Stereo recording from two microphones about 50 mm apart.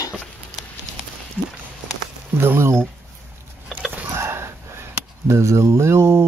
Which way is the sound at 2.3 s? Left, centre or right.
Right.